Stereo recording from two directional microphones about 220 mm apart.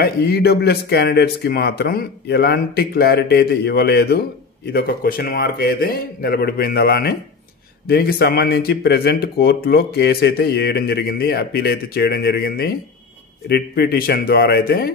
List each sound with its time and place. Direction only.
0.0 s speech: 45° left (ahead or behind)